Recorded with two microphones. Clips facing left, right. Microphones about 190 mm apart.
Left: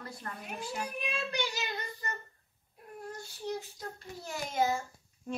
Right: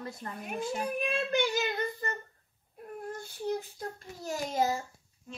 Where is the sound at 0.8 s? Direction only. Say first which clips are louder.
Right 6 dB; 50° right (ahead or behind).